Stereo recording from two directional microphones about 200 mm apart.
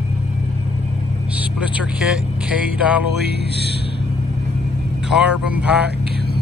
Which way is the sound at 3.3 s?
55° right (ahead or behind).